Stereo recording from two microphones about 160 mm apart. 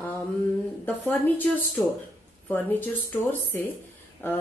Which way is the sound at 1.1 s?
10° left (ahead or behind).